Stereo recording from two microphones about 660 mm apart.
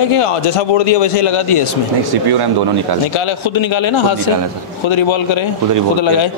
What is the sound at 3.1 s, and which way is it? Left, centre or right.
A man's voice, left.